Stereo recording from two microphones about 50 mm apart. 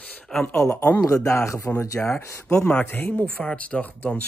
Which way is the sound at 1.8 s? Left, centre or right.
Left.